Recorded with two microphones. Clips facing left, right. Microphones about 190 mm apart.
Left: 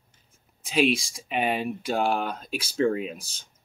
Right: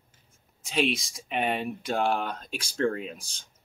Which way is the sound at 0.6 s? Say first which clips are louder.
Left 4 dB; centre (ahead or behind).